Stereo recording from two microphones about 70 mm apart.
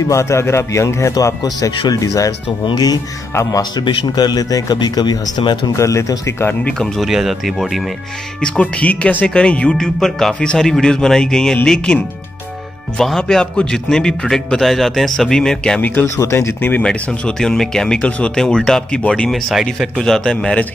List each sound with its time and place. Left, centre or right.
0.1 s a man's voice: left
1.4 s speech: left
2.7 s speech: left
3.3 s speech: left
3.7 s speech: left
5.7 s a man's voice: left
6.7 s a man's voice: centre
7.1 s speech: centre
8.4 s a man's voice: centre
15.8 s speech: left
16.2 s speech: left
16.8 s a man's voice: centre
19.5 s speech: centre
20.0 s a man's voice: centre